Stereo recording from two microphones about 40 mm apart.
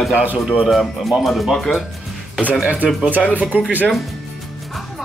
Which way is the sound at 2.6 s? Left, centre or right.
Right.